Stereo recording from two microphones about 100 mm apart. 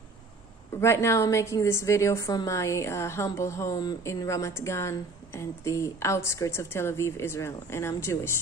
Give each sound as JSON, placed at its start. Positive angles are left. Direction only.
{"t": 0.7, "sound": "a woman's voice", "side_deg": 25}